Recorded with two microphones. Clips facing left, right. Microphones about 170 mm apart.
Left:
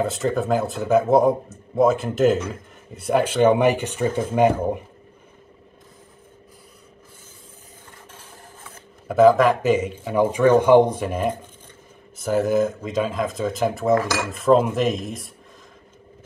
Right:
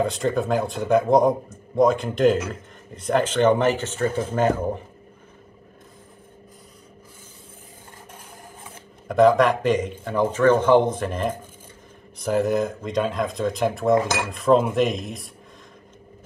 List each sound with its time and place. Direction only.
0.0 s speech: centre (ahead or behind)
9.0 s speech: 5° left (ahead or behind)
13.9 s cutlery: 20° right (ahead or behind)
14.3 s speech: centre (ahead or behind)